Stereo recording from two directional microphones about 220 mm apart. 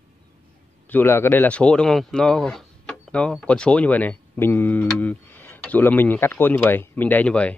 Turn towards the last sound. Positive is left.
turn(degrees=5)  # may be behind; listen again after turning